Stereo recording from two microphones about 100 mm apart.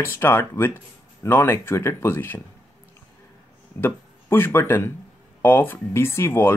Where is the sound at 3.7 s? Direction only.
20° left (ahead or behind).